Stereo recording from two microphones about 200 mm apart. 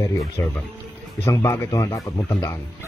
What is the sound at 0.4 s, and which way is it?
Speech, 10° left (ahead or behind).